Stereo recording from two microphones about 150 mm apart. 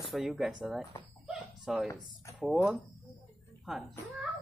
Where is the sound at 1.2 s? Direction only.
Centre (ahead or behind).